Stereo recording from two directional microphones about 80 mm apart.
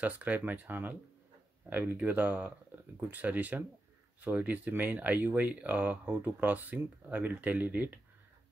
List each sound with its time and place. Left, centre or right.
0.0 s speech: centre